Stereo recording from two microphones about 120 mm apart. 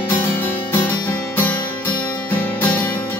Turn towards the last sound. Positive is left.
turn(degrees=20)  # may be behind; listen again after turning